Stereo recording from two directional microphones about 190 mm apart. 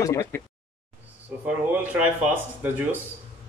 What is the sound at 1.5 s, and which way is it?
Speech, 10° right (ahead or behind).